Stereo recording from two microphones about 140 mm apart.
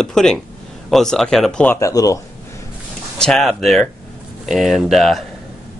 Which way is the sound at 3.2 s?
Centre (ahead or behind).